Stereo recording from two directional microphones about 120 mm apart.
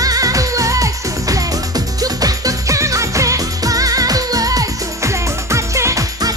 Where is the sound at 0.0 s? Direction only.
30° right (ahead or behind).